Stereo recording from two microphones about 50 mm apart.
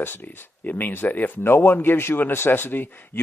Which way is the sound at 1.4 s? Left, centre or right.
Left.